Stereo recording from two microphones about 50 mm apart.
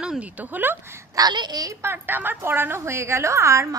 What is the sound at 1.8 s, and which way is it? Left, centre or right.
A woman's voice, right.